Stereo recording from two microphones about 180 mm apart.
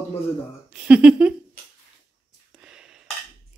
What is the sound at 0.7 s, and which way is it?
Speech, 5° right (ahead or behind).